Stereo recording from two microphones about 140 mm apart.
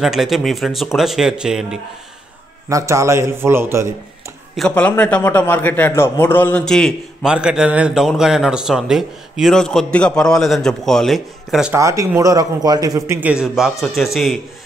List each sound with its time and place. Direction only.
0.0 s a man's voice: centre (ahead or behind)
2.7 s a man's voice: 20° right (ahead or behind)
4.6 s a man's voice: 10° left (ahead or behind)
7.2 s a man's voice: 5° right (ahead or behind)
11.7 s a man's voice: 20° right (ahead or behind); by 14.0 s centre (ahead or behind)